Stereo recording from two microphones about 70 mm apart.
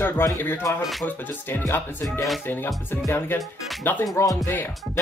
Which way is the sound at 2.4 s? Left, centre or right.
Left.